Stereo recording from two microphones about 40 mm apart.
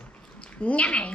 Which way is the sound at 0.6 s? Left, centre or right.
Left.